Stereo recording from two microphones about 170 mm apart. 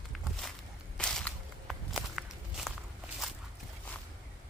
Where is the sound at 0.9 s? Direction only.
5° left (ahead or behind).